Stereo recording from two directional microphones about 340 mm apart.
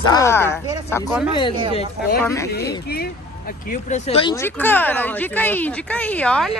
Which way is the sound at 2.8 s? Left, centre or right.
Left.